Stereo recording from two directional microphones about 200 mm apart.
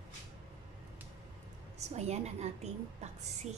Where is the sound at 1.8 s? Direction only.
35° right (ahead or behind).